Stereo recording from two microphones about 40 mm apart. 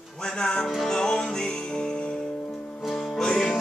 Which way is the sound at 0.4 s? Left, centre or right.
Centre.